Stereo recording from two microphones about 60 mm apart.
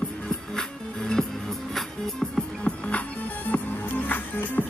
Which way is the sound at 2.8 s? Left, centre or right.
Left.